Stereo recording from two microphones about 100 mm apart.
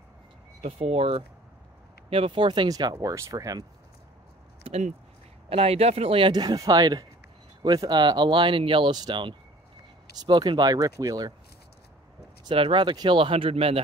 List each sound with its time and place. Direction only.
0.6 s speech: 90° right; by 2.4 s 75° right (ahead or behind)
2.4 s speech: 50° right (ahead or behind)
2.7 s speech: 40° right (ahead or behind)
4.7 s speech: 70° right (ahead or behind)
6.3 s speech: 40° right (ahead or behind)
12.4 s speech: 65° right (ahead or behind)